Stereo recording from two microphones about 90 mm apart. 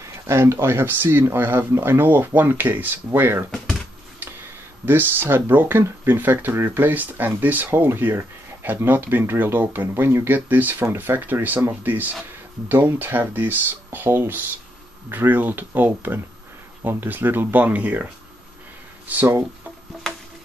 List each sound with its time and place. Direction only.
0.0 s speech: 30° right (ahead or behind)
4.8 s speech: 25° right (ahead or behind)
19.0 s speech: 20° right (ahead or behind)